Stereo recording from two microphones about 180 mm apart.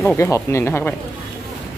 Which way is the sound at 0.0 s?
15° left (ahead or behind).